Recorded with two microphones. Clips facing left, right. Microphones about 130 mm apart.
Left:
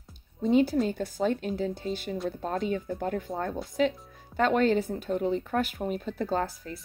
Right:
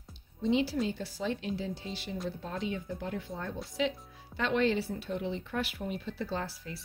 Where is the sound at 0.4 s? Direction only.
50° left (ahead or behind).